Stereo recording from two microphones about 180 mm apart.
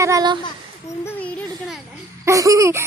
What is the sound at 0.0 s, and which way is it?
Speech, 20° right (ahead or behind).